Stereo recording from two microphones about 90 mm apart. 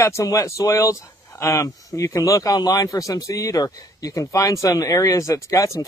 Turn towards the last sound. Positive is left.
turn(degrees=35)  # may be behind; listen again after turning